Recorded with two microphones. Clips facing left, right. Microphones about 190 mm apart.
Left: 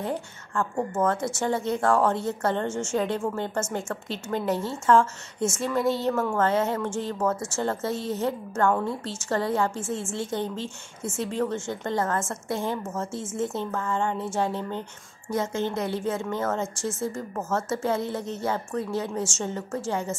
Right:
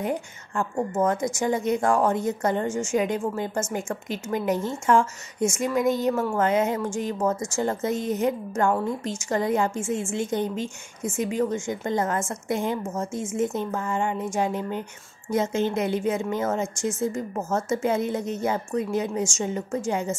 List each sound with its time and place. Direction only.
0.0 s speech: 15° right (ahead or behind)